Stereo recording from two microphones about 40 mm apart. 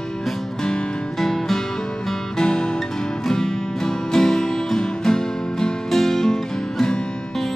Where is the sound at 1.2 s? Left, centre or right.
Centre.